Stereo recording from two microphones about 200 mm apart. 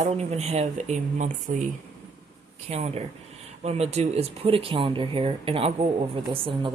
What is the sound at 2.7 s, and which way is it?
Speech, 30° right (ahead or behind).